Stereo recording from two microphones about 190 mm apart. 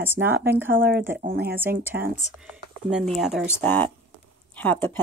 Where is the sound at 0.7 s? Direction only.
50° right (ahead or behind).